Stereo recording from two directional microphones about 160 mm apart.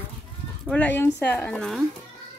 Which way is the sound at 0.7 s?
10° left (ahead or behind).